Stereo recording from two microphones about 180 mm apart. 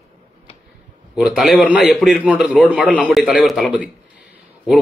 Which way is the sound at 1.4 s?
5° right (ahead or behind).